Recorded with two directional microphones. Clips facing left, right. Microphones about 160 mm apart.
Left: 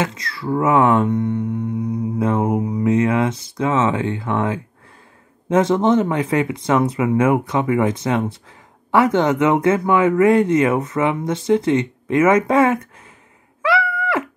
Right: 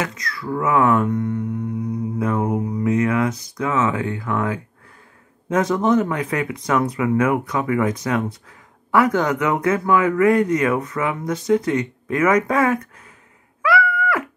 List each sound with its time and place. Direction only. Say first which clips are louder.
0.0 s speech: left 3 dB; 30° left (ahead or behind)
13.6 s groan: even; 25° left (ahead or behind)